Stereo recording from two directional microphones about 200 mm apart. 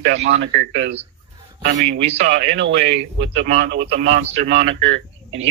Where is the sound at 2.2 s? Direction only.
65° right (ahead or behind).